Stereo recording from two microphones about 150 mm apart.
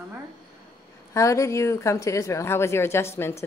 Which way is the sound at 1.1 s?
20° left (ahead or behind).